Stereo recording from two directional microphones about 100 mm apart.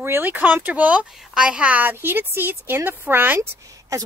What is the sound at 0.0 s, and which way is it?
Speech, 20° right (ahead or behind).